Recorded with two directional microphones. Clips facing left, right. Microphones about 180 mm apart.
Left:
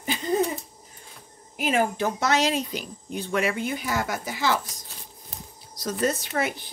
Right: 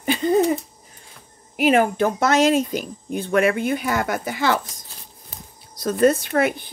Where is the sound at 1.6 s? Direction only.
65° right (ahead or behind).